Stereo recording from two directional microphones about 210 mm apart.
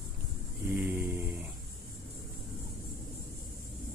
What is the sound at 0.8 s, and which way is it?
Speech, 5° right (ahead or behind).